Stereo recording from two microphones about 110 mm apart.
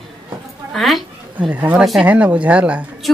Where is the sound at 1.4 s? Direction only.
15° right (ahead or behind).